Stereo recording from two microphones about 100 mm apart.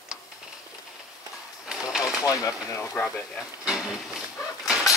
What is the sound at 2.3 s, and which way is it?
Speech, 35° left (ahead or behind).